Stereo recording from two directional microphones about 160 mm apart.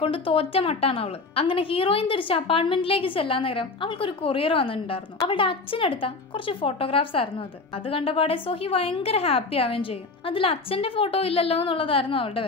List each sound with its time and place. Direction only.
0.0 s a woman's voice: 35° left (ahead or behind)